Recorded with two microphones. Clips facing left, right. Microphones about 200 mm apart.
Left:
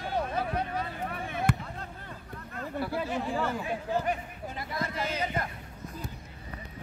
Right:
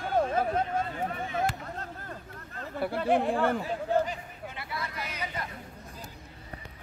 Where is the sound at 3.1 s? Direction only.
60° right (ahead or behind).